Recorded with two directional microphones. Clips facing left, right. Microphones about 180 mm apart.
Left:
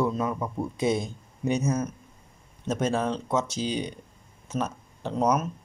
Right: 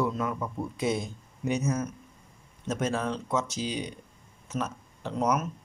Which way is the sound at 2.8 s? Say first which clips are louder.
Left 3 dB; 25° left (ahead or behind).